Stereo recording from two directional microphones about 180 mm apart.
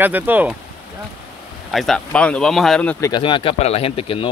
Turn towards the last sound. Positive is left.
turn(degrees=30)  # may be behind; listen again after turning